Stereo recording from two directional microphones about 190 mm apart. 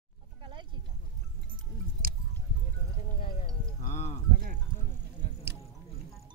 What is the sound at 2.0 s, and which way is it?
Music, 50° right (ahead or behind).